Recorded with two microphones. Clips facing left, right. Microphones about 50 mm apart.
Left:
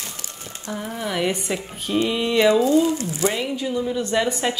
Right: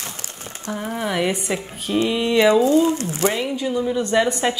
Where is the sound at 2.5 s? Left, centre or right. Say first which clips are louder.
Right 2 dB; right.